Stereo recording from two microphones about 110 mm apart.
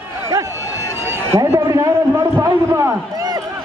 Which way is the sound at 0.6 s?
30° left (ahead or behind).